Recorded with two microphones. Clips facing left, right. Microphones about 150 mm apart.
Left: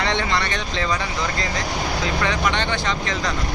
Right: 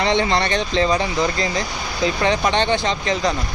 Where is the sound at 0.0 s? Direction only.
20° right (ahead or behind).